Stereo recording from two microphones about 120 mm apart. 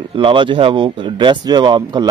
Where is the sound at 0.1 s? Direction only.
45° right (ahead or behind).